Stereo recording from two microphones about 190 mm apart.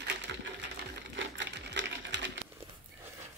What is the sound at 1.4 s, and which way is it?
Sewing machine, 70° right (ahead or behind).